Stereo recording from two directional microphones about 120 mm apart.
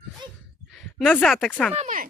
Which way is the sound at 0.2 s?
40° right (ahead or behind).